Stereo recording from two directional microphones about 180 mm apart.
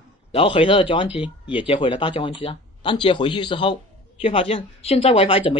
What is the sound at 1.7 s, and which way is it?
Speech, 30° left (ahead or behind).